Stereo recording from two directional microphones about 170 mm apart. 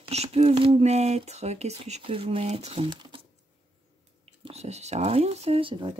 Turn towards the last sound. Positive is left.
turn(degrees=-30)  # may be behind; listen again after turning